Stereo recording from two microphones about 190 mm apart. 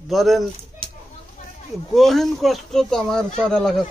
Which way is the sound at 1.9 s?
Centre (ahead or behind).